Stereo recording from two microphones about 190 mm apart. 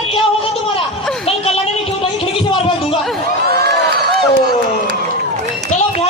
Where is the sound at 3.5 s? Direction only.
55° right (ahead or behind).